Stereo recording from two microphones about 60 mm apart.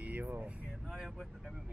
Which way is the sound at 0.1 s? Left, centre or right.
Right.